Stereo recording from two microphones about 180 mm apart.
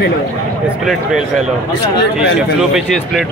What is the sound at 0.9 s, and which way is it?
Speech, centre (ahead or behind).